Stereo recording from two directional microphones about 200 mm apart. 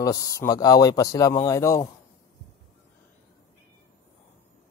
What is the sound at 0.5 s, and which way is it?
Speech, 20° left (ahead or behind).